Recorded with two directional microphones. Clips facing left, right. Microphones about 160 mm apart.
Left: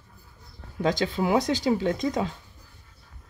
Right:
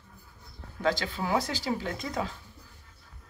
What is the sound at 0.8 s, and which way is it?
Speech, 15° left (ahead or behind).